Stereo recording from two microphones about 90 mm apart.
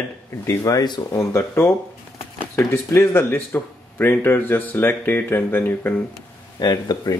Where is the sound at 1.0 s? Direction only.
30° left (ahead or behind).